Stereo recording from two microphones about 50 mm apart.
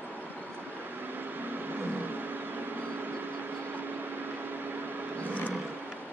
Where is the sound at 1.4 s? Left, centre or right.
Right.